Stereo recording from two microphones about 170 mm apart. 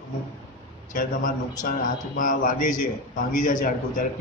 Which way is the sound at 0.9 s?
55° left (ahead or behind).